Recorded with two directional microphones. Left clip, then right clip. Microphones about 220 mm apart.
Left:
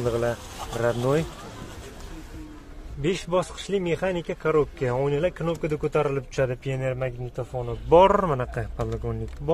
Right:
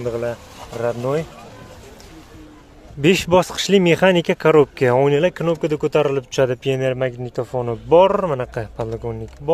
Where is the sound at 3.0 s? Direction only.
35° right (ahead or behind).